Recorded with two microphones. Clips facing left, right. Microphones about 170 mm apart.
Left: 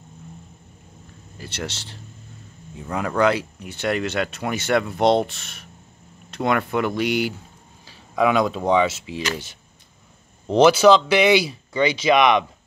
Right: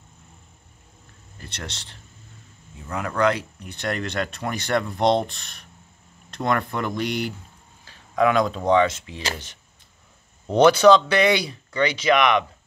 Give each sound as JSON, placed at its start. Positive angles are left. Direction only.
{"t": 1.5, "sound": "speech", "side_deg": 5}
{"t": 2.7, "sound": "speech", "side_deg": 20}
{"t": 3.2, "sound": "speech", "side_deg": 5}
{"t": 10.5, "sound": "speech", "side_deg": 5}